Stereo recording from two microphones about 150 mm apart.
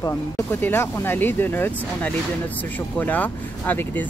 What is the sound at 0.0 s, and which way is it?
Speech, 15° left (ahead or behind).